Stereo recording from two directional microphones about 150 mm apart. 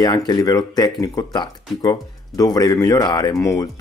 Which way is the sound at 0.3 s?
25° left (ahead or behind).